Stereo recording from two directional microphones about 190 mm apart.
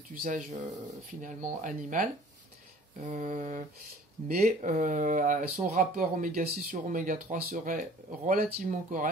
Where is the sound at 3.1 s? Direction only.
40° right (ahead or behind).